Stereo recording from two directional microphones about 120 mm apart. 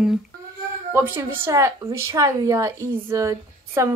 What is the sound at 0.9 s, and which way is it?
Speech, 15° right (ahead or behind).